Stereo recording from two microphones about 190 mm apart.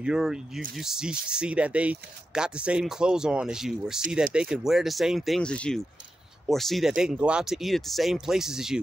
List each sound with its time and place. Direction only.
0.0 s speech: 5° right (ahead or behind)